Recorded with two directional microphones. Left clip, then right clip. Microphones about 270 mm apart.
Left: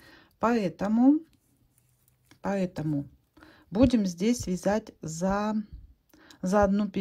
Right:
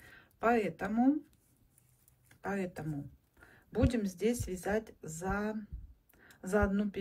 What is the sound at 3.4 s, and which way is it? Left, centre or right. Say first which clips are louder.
Speech: left 9 dB; centre.